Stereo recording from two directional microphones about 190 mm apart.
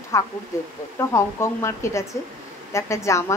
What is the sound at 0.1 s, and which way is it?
Speech, 15° left (ahead or behind).